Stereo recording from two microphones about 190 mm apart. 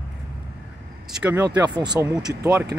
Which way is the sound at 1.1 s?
5° right (ahead or behind).